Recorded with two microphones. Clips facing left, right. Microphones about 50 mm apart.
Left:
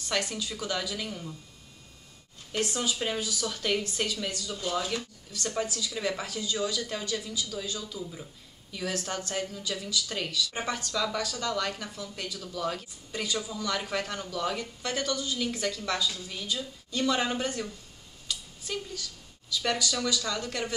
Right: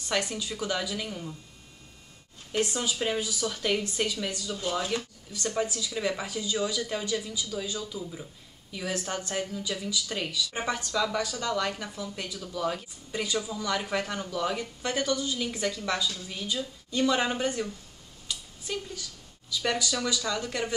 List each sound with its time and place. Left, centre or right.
0.1 s speech: centre
2.7 s speech: centre
4.9 s speech: right
5.7 s speech: centre
18.3 s a sound: centre
19.5 s speech: centre